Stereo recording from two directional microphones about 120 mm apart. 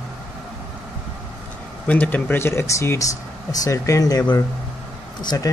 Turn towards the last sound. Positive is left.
turn(degrees=30)  # may be behind; listen again after turning